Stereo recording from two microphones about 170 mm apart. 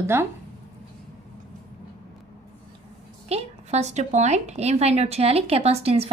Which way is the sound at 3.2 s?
40° right (ahead or behind).